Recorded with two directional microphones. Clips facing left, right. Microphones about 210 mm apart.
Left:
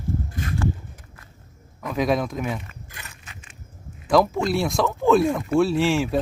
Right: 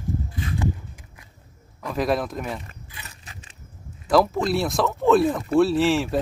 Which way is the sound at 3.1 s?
35° right (ahead or behind).